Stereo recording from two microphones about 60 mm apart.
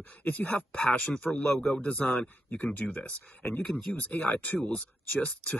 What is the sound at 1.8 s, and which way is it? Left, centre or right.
Speech, centre.